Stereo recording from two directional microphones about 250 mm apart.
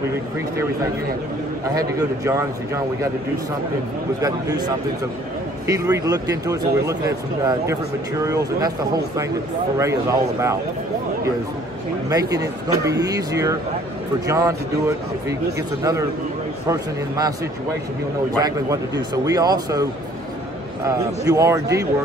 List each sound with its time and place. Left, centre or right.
1.8 s speech: centre
4.2 s speech: centre
12.1 s speech: centre
16.6 s speech: centre
18.4 s speech: centre